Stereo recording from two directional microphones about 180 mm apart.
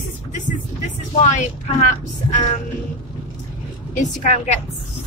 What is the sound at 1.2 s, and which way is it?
Speech, 40° left (ahead or behind).